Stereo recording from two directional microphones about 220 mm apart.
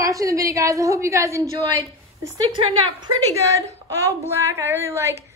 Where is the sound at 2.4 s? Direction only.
20° right (ahead or behind).